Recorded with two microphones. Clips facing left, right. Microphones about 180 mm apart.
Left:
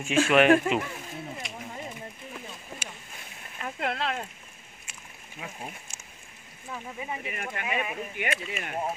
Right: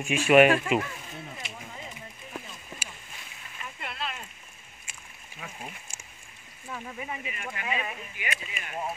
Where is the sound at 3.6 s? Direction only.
90° left.